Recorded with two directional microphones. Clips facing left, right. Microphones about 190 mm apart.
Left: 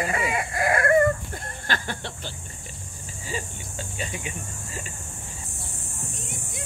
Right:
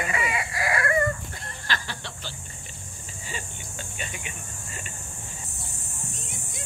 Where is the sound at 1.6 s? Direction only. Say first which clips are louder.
Left 3 dB; 50° left (ahead or behind).